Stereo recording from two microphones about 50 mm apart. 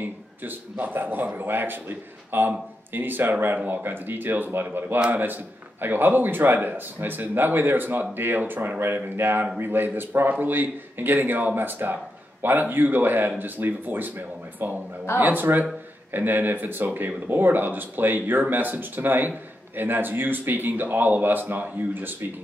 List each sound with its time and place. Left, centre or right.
0.0 s a man's voice: right